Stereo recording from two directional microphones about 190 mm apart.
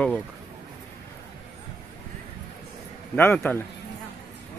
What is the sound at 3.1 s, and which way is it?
Speech, 10° left (ahead or behind).